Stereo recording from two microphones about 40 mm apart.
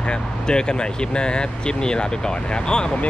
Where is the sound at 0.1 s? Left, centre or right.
Left.